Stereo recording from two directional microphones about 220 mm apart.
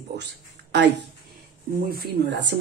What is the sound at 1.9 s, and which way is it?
Speech, 50° right (ahead or behind).